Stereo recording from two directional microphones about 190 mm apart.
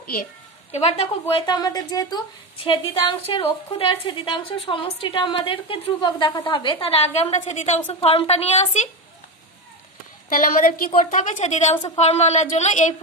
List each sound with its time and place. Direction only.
0.0 s a woman's voice: 50° left (ahead or behind)
0.7 s a woman's voice: 35° left (ahead or behind)
1.3 s a woman's voice: 20° left (ahead or behind)
10.3 s a woman's voice: 45° left (ahead or behind)